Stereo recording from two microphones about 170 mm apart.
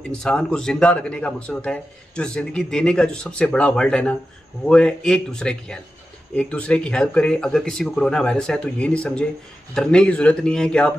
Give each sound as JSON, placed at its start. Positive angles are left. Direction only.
{"t": 0.2, "sound": "speech", "side_deg": 5}